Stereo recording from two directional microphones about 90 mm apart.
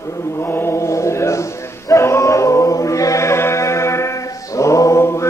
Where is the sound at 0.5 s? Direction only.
25° left (ahead or behind).